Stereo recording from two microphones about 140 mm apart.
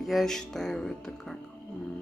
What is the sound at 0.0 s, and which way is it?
Speech, centre (ahead or behind).